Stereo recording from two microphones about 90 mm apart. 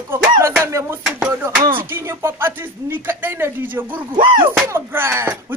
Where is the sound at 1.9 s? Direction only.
30° right (ahead or behind).